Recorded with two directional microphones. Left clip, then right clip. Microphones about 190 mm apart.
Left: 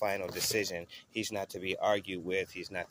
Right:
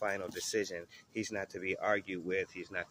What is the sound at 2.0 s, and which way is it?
Speech, 60° left (ahead or behind).